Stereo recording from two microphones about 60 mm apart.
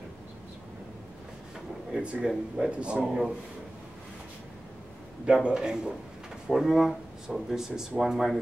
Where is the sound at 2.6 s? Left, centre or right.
Centre.